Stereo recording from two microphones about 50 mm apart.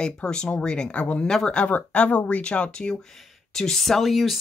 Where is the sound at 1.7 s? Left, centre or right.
Left.